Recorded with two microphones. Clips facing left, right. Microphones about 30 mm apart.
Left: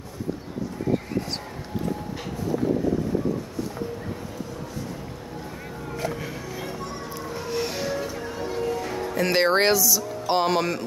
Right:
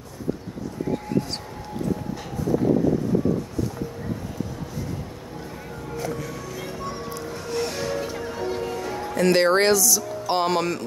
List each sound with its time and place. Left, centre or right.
5.9 s music: left
6.6 s music: centre
8.4 s music: centre
9.0 s speech: centre